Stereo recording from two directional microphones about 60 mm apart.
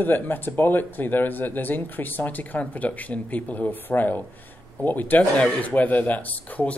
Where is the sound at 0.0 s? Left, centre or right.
Left.